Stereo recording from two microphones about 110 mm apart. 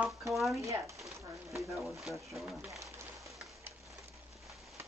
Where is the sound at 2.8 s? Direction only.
30° right (ahead or behind).